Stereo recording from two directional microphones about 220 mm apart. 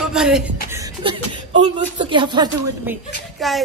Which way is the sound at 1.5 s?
30° right (ahead or behind).